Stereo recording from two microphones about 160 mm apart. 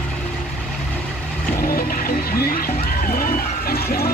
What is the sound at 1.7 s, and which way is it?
Music, 70° left (ahead or behind).